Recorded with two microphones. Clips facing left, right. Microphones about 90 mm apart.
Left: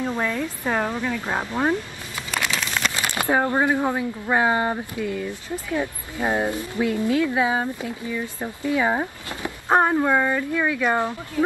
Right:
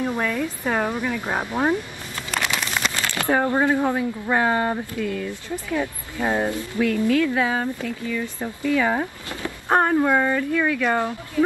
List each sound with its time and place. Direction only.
0.2 s speech: 10° left (ahead or behind)
0.7 s speech: 10° right (ahead or behind)
1.7 s a sound: 10° left (ahead or behind)
2.4 s a sound: 5° right (ahead or behind)
3.0 s speech: 20° left (ahead or behind)
9.9 s speech: 5° left (ahead or behind)